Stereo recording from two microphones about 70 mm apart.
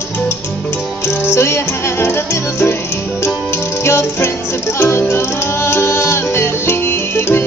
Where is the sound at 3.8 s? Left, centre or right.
Left.